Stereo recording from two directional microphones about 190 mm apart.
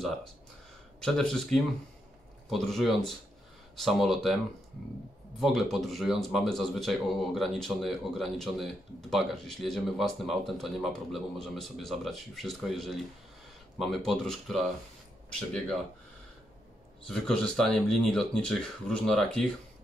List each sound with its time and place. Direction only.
1.0 s speech: 5° left (ahead or behind)
5.4 s speech: centre (ahead or behind)
17.1 s speech: 5° left (ahead or behind)